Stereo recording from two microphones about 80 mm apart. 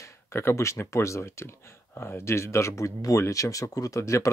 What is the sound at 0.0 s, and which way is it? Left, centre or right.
Speech, left.